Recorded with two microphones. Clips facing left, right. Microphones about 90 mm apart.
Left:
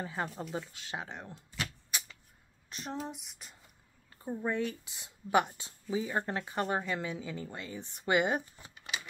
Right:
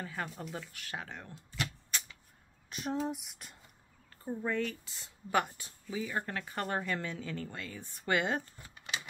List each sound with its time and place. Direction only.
0.0 s speech: 25° left (ahead or behind)
1.5 s a sound: 5° left (ahead or behind)
4.2 s speech: 15° left (ahead or behind)